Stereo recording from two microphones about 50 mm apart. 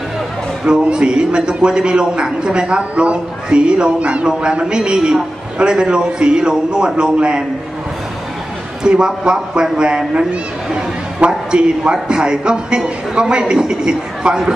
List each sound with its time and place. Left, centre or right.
0.7 s a man's voice: centre
8.8 s a man's voice: centre